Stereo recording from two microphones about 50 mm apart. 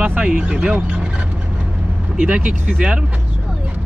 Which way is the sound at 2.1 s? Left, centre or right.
Right.